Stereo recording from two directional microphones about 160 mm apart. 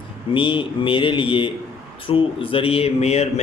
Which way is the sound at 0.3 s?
30° left (ahead or behind).